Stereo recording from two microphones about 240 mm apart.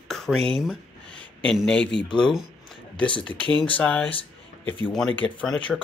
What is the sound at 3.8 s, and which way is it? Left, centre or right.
Speech, centre.